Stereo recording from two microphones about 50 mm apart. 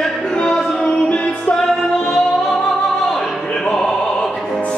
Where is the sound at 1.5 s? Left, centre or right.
Centre.